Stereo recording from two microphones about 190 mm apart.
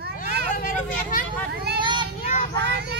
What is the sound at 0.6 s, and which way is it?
Vehicle, 45° left (ahead or behind).